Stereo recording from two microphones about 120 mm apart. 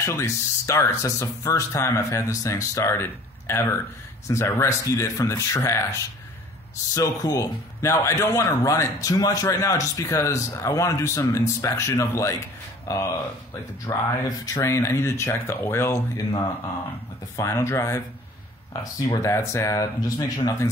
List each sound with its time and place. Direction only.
0.0 s a man's voice: 25° left (ahead or behind)
7.0 s a man's voice: 30° left (ahead or behind)
17.4 s a man's voice: 25° left (ahead or behind)